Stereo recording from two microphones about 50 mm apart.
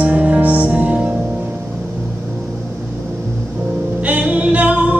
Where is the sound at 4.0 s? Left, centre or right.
Right.